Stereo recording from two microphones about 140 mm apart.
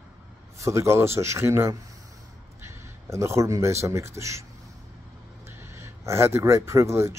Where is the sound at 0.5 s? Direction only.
20° right (ahead or behind).